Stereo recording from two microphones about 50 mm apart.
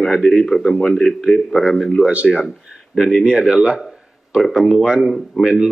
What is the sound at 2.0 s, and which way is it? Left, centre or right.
Speech, right.